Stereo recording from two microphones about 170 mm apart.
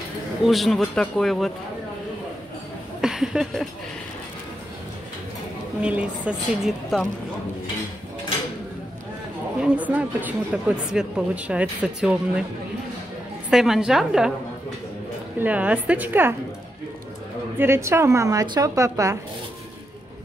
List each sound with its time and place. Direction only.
0.5 s speech: centre (ahead or behind)
3.0 s a sound: 5° right (ahead or behind)
5.8 s speech: 5° right (ahead or behind)
9.6 s speech: 10° right (ahead or behind)
13.5 s speech: 5° right (ahead or behind)
15.4 s speech: 10° right (ahead or behind)
17.6 s speech: 15° right (ahead or behind)